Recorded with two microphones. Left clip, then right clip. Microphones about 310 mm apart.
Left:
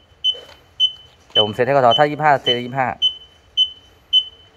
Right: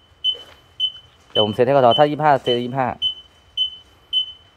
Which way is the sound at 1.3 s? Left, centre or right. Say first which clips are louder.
Even; centre.